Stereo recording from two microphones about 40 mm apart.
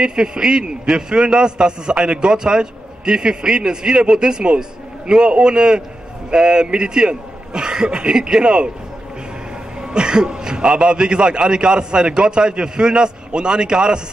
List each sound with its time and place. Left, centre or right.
0.0 s a man's voice: right
9.8 s a man's voice: centre